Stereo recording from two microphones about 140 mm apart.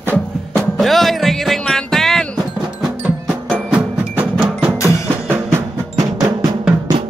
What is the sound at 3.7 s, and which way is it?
Music, 10° right (ahead or behind).